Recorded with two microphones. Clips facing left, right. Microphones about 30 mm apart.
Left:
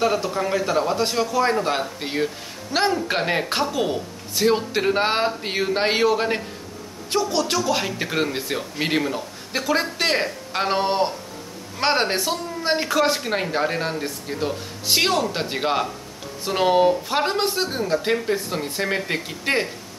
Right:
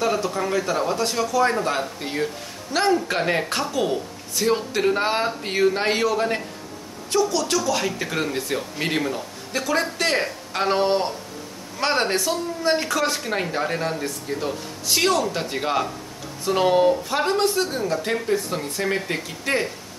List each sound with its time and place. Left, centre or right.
0.0 s speech: centre
0.4 s speech: centre
1.2 s speech: left
5.2 s speech: centre
19.4 s speech: left